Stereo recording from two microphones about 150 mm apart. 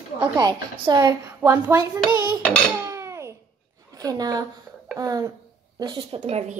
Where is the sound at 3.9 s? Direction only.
25° right (ahead or behind).